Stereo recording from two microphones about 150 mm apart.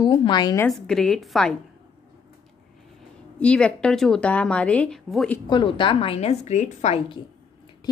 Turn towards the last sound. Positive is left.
turn(degrees=50)  # may be behind; listen again after turning